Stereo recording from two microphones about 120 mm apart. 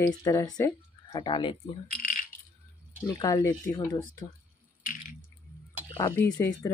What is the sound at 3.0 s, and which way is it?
Speech, 30° left (ahead or behind).